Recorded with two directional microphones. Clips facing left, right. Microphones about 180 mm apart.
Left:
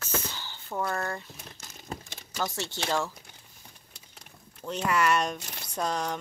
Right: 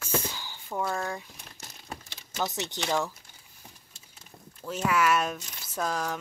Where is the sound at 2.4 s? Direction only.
20° right (ahead or behind).